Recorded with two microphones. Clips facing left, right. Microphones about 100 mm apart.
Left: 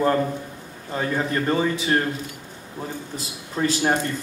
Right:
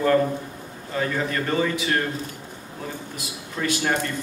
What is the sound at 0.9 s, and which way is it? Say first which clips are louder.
A man's voice: left 1 dB; 30° left (ahead or behind).